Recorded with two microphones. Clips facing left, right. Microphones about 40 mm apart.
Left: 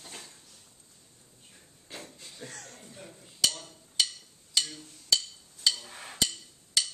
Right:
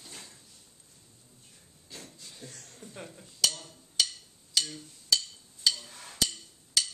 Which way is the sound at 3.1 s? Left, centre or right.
Centre.